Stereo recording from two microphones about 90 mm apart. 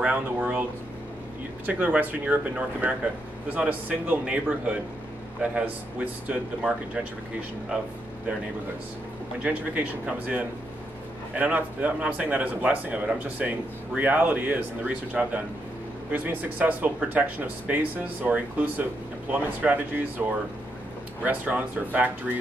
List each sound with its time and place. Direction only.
0.0 s speech: 15° right (ahead or behind)
1.7 s speech: 15° right (ahead or behind)
9.4 s speech: 15° right (ahead or behind)